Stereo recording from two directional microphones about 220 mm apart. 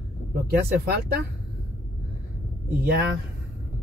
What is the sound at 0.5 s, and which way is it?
Speech, 45° right (ahead or behind).